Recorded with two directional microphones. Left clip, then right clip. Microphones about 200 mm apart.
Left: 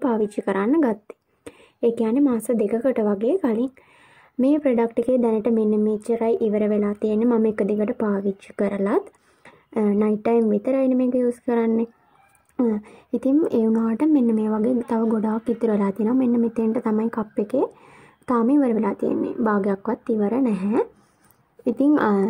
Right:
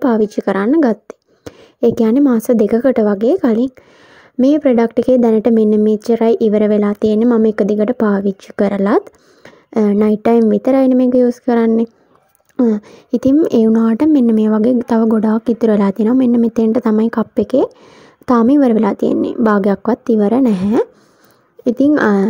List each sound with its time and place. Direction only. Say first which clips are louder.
0.0 s speech: right 8 dB; 40° right (ahead or behind)